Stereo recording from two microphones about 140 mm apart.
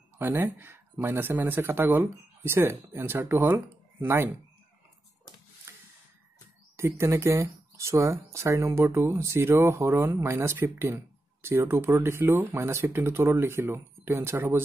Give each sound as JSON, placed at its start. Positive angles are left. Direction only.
{"t": 0.2, "sound": "speech", "side_deg": -15}
{"t": 6.8, "sound": "speech", "side_deg": -20}